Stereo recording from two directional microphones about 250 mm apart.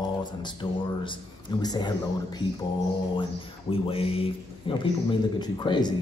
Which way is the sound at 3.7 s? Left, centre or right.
Left.